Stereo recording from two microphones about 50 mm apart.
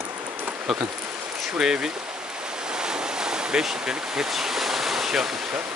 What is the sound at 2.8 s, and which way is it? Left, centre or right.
Ocean, centre.